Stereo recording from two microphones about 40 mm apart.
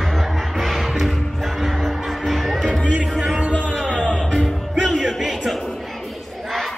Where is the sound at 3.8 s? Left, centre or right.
Right.